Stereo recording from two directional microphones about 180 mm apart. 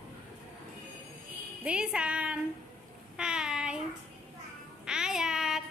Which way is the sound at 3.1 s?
5° right (ahead or behind).